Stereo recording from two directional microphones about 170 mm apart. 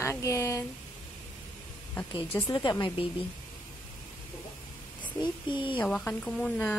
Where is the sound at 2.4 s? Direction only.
25° left (ahead or behind).